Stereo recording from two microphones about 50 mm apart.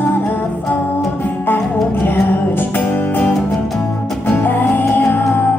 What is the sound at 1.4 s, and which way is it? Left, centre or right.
Music, left.